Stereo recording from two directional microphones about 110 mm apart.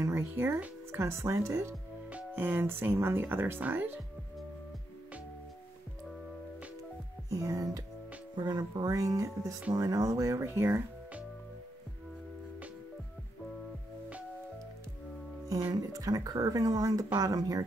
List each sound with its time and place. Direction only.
0.0 s speech: 20° right (ahead or behind)
2.0 s speech: 15° right (ahead or behind)
7.2 s speech: 30° right (ahead or behind)
15.7 s speech: 35° right (ahead or behind)